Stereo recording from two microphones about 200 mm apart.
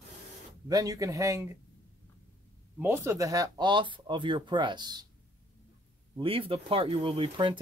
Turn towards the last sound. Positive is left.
turn(degrees=-25)  # may be behind; listen again after turning